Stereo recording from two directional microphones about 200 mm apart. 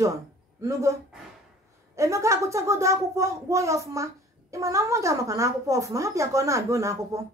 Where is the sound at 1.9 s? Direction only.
15° right (ahead or behind).